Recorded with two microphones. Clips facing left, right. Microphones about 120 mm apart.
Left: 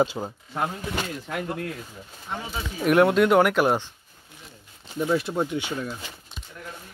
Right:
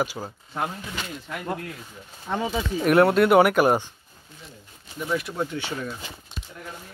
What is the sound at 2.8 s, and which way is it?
Speech, centre (ahead or behind).